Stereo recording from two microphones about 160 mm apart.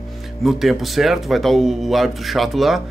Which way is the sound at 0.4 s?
Centre (ahead or behind).